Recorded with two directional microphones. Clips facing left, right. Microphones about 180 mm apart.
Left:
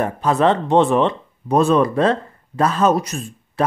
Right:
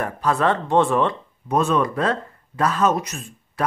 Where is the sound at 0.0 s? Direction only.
20° left (ahead or behind).